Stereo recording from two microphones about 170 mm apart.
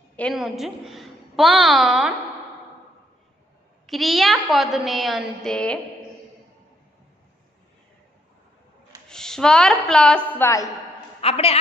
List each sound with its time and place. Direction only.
0.1 s a woman's voice: 5° left (ahead or behind)
3.8 s a woman's voice: centre (ahead or behind)
9.1 s a woman's voice: 5° left (ahead or behind)
11.1 s a woman's voice: 35° left (ahead or behind)